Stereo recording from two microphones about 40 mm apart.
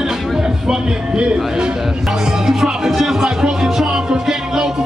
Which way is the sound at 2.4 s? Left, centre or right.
Centre.